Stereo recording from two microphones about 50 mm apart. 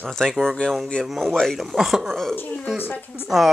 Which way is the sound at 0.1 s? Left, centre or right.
Centre.